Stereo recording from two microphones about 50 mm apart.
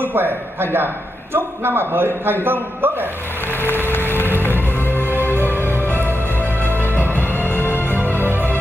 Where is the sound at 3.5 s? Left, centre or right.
Left.